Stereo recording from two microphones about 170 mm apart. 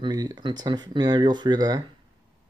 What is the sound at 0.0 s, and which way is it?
Speech, 20° right (ahead or behind).